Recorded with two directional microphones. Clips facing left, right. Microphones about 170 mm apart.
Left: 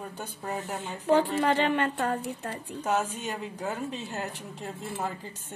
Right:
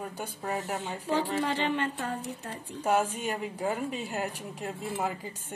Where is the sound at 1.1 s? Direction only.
60° left (ahead or behind).